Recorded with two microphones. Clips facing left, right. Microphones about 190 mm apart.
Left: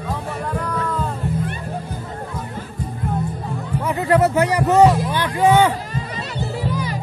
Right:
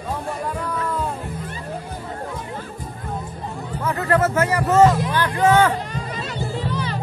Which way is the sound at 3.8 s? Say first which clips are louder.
Left 3 dB; 15° left (ahead or behind).